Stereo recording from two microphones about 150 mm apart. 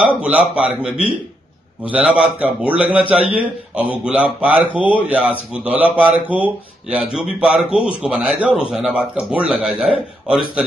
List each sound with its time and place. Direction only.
0.2 s a man's voice: 5° right (ahead or behind)